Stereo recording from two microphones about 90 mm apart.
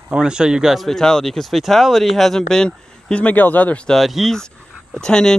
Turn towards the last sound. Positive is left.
turn(degrees=10)  # may be behind; listen again after turning